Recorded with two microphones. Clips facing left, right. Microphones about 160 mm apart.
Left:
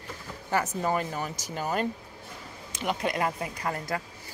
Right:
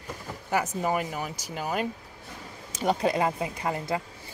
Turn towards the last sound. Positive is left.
turn(degrees=-25)  # may be behind; listen again after turning